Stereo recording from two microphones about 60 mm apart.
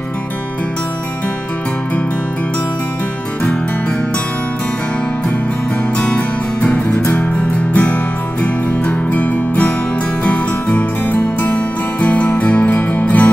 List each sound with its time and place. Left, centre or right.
5.9 s music: left